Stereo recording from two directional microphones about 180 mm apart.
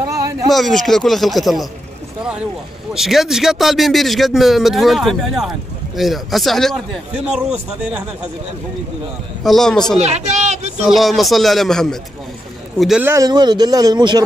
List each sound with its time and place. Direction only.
0.1 s a sound: 20° right (ahead or behind)
0.5 s speech: centre (ahead or behind)
2.9 s a man's voice: centre (ahead or behind)
9.4 s speech: centre (ahead or behind)
9.9 s a woman's voice: 40° right (ahead or behind)
10.8 s speech: centre (ahead or behind)
13.0 s speech: 20° right (ahead or behind)